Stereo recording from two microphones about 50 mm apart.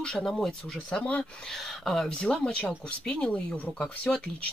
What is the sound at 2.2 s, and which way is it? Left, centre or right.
Speech, centre.